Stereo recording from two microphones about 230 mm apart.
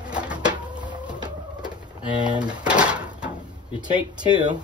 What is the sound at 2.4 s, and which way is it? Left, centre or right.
Drawer open or close, centre.